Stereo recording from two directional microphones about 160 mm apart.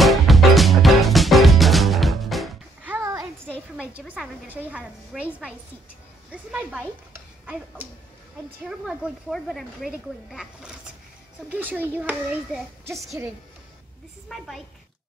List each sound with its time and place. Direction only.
0.0 s music: centre (ahead or behind)
2.9 s a sound: 20° right (ahead or behind)
4.1 s a child's voice: 10° right (ahead or behind)
14.3 s speech: centre (ahead or behind)